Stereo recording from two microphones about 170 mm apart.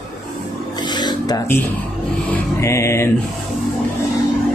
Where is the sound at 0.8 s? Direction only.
25° left (ahead or behind).